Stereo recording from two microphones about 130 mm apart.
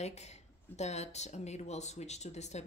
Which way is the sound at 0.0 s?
60° left (ahead or behind).